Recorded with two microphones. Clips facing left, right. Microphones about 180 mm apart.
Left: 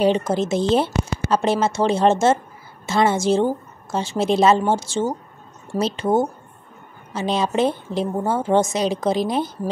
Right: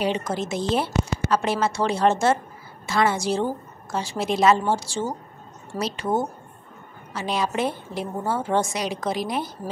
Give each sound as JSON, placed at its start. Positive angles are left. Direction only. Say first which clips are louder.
{"t": 0.0, "sound": "a woman's voice", "louder": "left 6 dB", "side_deg": 30}